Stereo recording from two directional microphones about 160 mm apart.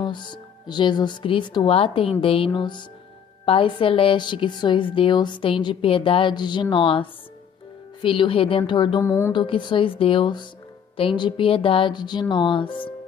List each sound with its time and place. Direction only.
0.0 s a woman's voice: 30° left (ahead or behind)
9.0 s speech: 15° left (ahead or behind)
9.3 s a woman's voice: 30° left (ahead or behind)